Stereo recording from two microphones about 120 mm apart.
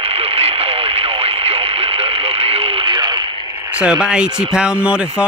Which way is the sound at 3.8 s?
5° right (ahead or behind).